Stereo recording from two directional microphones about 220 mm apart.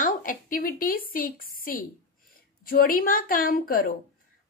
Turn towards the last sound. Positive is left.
turn(degrees=40)  # may be behind; listen again after turning